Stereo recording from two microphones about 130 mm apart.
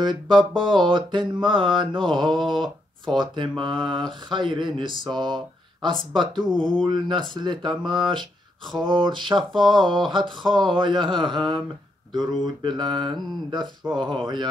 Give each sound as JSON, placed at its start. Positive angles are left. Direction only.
{"t": 0.0, "sound": "speech", "side_deg": -35}
{"t": 2.3, "sound": "speech", "side_deg": 0}
{"t": 3.2, "sound": "speech", "side_deg": -35}
{"t": 9.5, "sound": "speech", "side_deg": 5}
{"t": 9.8, "sound": "speech", "side_deg": -35}